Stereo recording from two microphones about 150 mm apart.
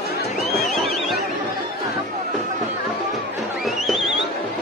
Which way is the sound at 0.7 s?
Centre (ahead or behind).